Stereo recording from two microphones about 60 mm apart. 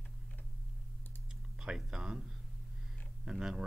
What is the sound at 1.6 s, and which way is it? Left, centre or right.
Speech, centre.